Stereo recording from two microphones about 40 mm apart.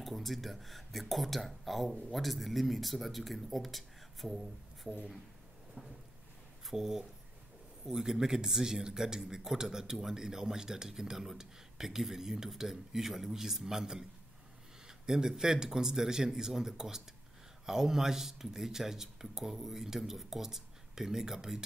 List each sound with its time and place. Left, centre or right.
0.0 s speech: centre
5.8 s a sound: right
6.7 s speech: centre